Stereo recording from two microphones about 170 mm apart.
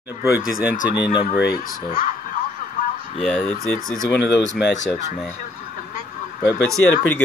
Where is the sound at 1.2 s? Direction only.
55° left (ahead or behind).